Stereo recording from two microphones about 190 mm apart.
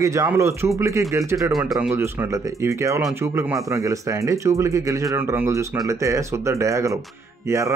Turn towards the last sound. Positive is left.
turn(degrees=-15)  # may be behind; listen again after turning